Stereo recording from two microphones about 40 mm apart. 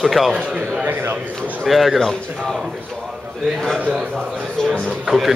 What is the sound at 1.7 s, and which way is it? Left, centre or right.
Speech, centre.